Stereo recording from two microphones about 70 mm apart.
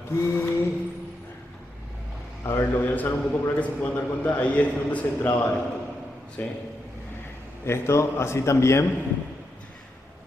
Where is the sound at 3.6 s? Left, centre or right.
Left.